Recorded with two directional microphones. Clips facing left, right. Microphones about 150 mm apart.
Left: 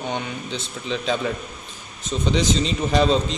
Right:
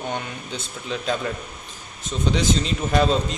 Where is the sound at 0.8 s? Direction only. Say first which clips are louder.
Left 2 dB; 10° right (ahead or behind).